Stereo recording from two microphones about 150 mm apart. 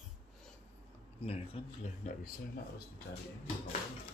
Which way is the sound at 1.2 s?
40° left (ahead or behind).